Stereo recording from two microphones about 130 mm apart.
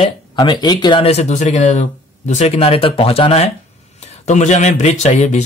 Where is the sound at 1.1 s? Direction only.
60° left (ahead or behind).